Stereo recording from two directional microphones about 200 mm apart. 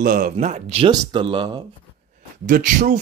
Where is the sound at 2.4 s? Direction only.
40° right (ahead or behind).